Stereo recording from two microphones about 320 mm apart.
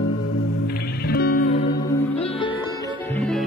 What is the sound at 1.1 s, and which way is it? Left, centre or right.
Music, left.